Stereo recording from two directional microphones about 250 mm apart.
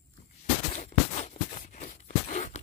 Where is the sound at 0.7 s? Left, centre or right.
Left.